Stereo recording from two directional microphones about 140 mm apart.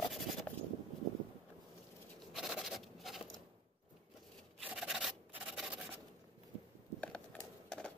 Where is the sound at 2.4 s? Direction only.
5° right (ahead or behind).